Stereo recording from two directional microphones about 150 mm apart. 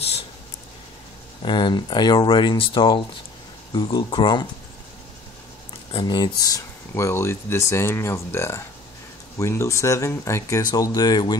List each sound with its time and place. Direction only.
1.4 s speech: 30° left (ahead or behind)
5.9 s speech: 35° left (ahead or behind)